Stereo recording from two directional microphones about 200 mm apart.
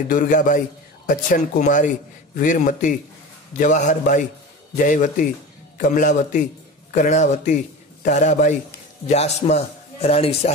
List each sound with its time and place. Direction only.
0.1 s a man's voice: 40° left (ahead or behind)